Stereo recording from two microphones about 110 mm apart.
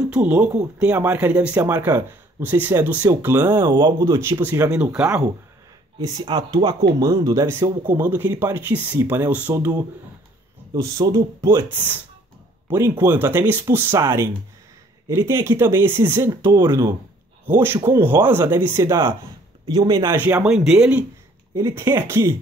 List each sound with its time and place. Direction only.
0.1 s speech: 10° right (ahead or behind)
3.4 s speech: 40° right (ahead or behind)
4.0 s speech: 25° right (ahead or behind)
4.6 s speech: 10° right (ahead or behind)
5.9 s speech: 35° right (ahead or behind)
7.4 s speech: 20° right (ahead or behind)
10.7 s speech: 30° right (ahead or behind)
12.7 s speech: 20° right (ahead or behind)
16.5 s speech: 35° right (ahead or behind)
17.5 s speech: 20° right (ahead or behind)
19.7 s speech: 35° right (ahead or behind)
20.2 s speech: 15° right (ahead or behind)
20.4 s speech: 5° right (ahead or behind)
21.5 s speech: 30° right (ahead or behind)